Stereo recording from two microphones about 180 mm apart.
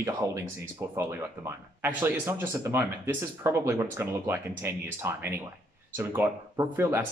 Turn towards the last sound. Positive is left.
turn(degrees=-15)  # may be behind; listen again after turning